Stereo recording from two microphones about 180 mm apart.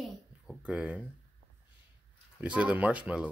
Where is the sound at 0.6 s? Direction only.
5° right (ahead or behind).